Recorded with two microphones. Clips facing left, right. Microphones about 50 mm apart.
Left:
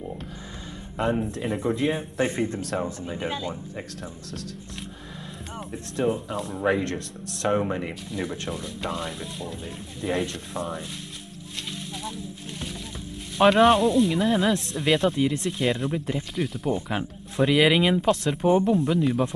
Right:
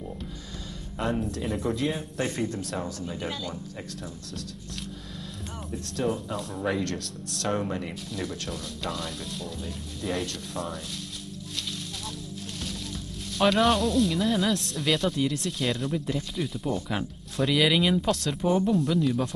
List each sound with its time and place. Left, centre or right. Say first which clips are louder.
0.9 s speech: left 3 dB; centre
1.4 s speech: left 3 dB; centre
2.2 s speech: left 3 dB; left
6.0 s speech: left 3 dB; centre
6.6 s speech: left 5 dB; left
12.0 s snake: left 3 dB; centre
13.4 s speech: left 5 dB; centre
16.3 s speech: left 3 dB; centre
16.6 s speech: left 2 dB; left
18.0 s speech: left 4 dB; centre
18.9 s speech: left 2 dB; left